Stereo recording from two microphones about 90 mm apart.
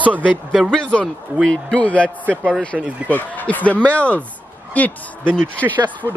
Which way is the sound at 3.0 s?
15° left (ahead or behind).